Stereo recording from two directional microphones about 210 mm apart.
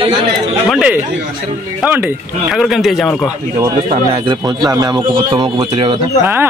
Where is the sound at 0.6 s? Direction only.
5° right (ahead or behind).